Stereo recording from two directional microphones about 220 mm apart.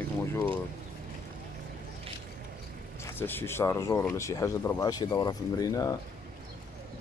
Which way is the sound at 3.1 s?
10° left (ahead or behind).